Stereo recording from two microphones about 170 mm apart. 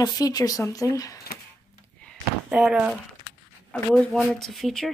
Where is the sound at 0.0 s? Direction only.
20° left (ahead or behind).